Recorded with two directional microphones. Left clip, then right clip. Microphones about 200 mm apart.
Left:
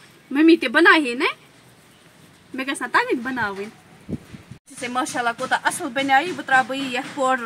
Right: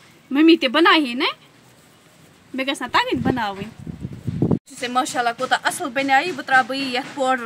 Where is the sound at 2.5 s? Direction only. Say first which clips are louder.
Right 1 dB; 30° right (ahead or behind).